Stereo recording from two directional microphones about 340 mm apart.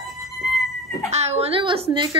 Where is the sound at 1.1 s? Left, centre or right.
Centre.